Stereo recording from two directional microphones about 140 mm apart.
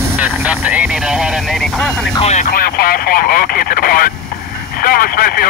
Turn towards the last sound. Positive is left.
turn(degrees=90)